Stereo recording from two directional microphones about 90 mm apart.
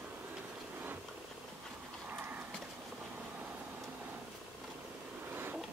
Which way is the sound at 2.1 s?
20° right (ahead or behind).